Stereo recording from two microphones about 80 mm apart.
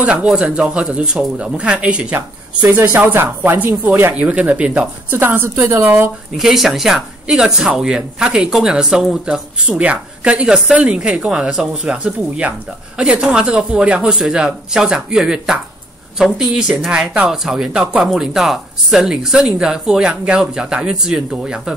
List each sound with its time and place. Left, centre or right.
0.0 s speech: centre
5.1 s speech: right
6.3 s speech: centre